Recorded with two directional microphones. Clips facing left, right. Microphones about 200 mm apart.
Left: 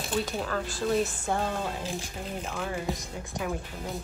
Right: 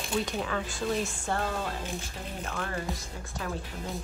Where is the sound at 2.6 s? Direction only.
10° left (ahead or behind).